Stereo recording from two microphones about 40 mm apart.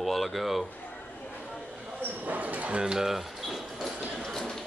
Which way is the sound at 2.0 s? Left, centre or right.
Right.